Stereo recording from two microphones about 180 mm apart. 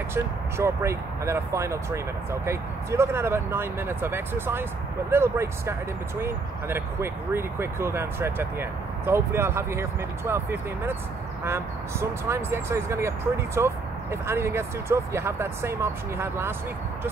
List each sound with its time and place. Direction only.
0.1 s speech: 15° right (ahead or behind)